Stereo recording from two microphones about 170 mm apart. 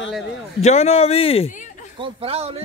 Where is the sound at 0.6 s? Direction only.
40° left (ahead or behind).